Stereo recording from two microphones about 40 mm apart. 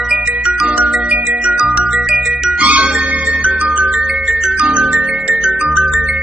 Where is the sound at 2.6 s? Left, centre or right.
Right.